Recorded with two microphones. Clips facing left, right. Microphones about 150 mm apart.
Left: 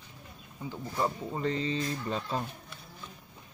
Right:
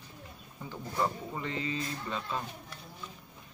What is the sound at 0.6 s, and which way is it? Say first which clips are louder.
Speech: left 1 dB; 15° left (ahead or behind).